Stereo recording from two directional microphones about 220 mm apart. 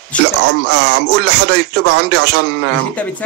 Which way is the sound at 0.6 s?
50° right (ahead or behind).